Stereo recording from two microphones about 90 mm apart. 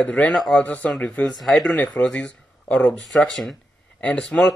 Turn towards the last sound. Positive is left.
turn(degrees=10)  # may be behind; listen again after turning